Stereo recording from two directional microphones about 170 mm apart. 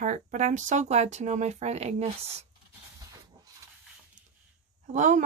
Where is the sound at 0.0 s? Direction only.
45° right (ahead or behind).